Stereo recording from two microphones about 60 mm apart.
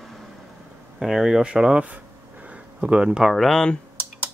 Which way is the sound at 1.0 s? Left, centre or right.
Centre.